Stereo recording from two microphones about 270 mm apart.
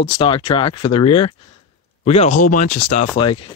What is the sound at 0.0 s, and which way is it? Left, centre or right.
Speech, centre.